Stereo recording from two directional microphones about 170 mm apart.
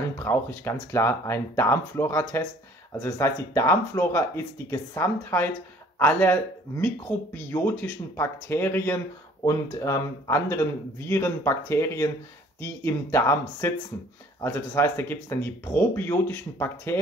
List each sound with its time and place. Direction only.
0.2 s speech: 15° left (ahead or behind)
7.5 s speech: 15° left (ahead or behind)